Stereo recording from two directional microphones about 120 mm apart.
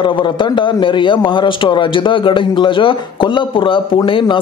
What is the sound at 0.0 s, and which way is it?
A man's voice, 45° left (ahead or behind).